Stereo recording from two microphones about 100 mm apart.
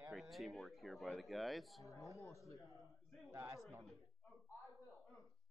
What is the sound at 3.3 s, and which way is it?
Speech, 25° right (ahead or behind).